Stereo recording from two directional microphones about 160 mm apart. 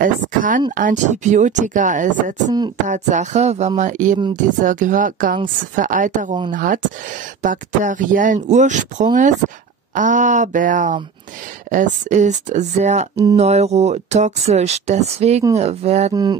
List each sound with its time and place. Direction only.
0.0 s a woman's voice: 55° right (ahead or behind)
16.1 s speech: 25° right (ahead or behind)